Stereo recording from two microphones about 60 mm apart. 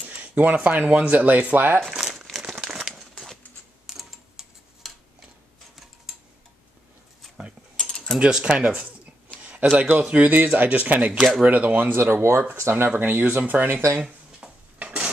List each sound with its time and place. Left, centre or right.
0.0 s speech: right
1.9 s crumpling: centre
3.0 s a sound: centre
7.7 s mechanisms: centre
8.2 s speech: centre
9.4 s a sound: right
9.8 s speech: right
11.1 s speech: centre
11.4 s speech: right
14.0 s dishes: centre